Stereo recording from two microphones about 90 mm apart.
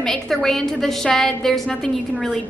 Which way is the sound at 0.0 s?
5° left (ahead or behind).